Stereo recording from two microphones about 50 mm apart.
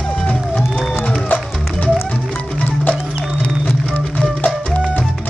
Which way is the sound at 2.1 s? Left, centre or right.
Left.